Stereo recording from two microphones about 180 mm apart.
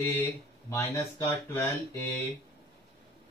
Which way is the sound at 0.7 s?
15° left (ahead or behind).